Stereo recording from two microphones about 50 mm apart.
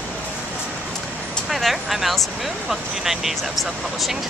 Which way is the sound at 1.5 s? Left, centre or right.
Centre.